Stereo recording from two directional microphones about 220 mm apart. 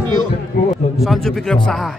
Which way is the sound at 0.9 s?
Centre (ahead or behind).